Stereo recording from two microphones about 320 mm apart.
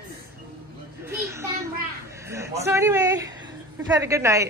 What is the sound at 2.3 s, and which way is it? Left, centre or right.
A woman's voice, centre.